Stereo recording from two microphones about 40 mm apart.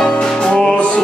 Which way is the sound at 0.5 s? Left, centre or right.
Left.